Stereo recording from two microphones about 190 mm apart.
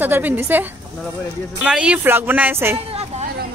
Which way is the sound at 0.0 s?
10° right (ahead or behind).